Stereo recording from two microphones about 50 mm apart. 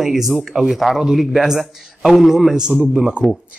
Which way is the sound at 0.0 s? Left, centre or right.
Centre.